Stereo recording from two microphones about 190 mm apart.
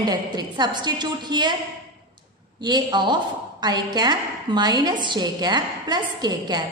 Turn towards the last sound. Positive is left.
turn(degrees=-20)  # may be behind; listen again after turning